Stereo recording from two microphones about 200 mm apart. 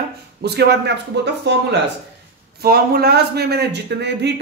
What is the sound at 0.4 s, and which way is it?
A man's voice, 55° right (ahead or behind).